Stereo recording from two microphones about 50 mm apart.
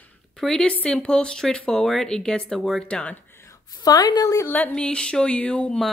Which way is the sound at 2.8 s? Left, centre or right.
Left.